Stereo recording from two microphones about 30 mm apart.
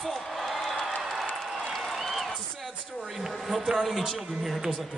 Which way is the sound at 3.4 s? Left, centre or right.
Centre.